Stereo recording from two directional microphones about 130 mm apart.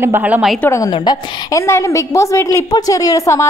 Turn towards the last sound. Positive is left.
turn(degrees=25)  # may be behind; listen again after turning